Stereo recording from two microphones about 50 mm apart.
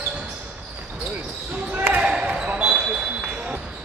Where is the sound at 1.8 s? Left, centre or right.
Right.